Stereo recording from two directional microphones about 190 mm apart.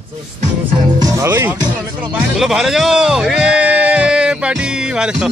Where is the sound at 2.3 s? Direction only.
Centre (ahead or behind).